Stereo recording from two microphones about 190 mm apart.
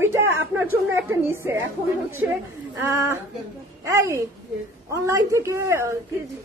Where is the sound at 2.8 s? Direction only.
15° right (ahead or behind).